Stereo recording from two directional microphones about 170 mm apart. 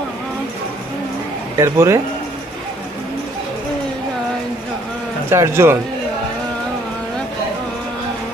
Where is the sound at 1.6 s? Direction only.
15° right (ahead or behind).